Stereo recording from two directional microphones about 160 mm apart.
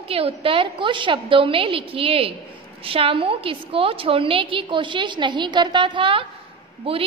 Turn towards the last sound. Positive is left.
turn(degrees=-35)  # may be behind; listen again after turning